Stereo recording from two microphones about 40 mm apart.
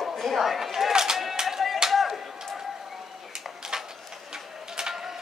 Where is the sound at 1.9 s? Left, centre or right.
Centre.